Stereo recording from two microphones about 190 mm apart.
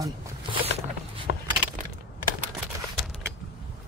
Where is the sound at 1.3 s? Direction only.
40° right (ahead or behind).